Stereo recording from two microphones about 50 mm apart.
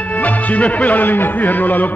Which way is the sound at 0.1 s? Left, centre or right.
Left.